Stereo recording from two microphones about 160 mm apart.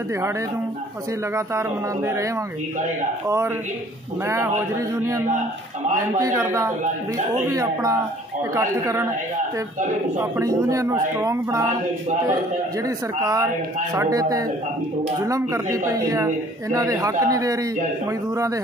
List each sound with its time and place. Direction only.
1.3 s speech: 20° right (ahead or behind)
3.3 s speech: 15° right (ahead or behind)
10.1 s speech: 15° right (ahead or behind)
12.8 s speech: 20° right (ahead or behind)